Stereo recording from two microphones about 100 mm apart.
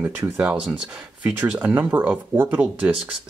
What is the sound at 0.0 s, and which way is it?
Speech, 20° right (ahead or behind).